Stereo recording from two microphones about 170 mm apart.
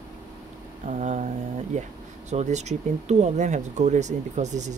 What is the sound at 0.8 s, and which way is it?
Mantra, 45° right (ahead or behind).